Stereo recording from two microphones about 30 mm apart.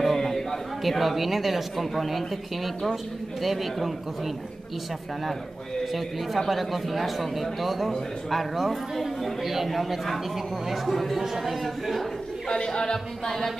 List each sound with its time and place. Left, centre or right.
0.0 s chatter: centre
0.8 s speech: centre
5.9 s speech: centre
11.1 s speech: centre
12.4 s speech: left